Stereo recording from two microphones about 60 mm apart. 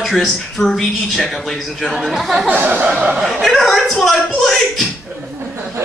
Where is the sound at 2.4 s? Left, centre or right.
Right.